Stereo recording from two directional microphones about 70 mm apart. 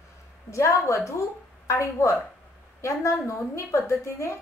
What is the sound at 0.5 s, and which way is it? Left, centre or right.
A woman's voice, left.